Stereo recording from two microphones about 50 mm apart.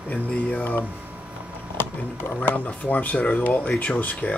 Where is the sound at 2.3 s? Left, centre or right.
Left.